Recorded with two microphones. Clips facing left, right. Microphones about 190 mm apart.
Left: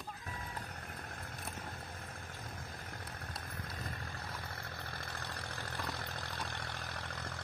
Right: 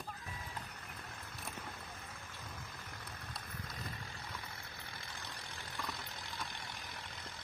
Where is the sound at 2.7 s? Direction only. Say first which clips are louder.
Left 3 dB; 45° left (ahead or behind).